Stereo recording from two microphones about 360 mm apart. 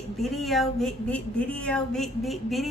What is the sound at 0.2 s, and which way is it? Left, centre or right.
Speech, centre.